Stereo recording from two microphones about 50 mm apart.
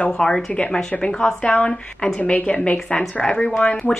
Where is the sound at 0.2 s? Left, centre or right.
Centre.